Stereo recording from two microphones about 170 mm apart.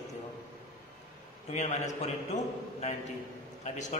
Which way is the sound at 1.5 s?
40° left (ahead or behind).